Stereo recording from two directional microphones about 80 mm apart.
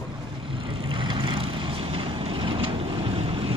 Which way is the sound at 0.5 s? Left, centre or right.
Right.